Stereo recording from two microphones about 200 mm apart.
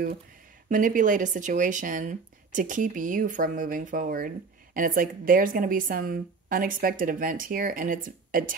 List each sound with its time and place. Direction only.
0.7 s a woman's voice: 40° right (ahead or behind)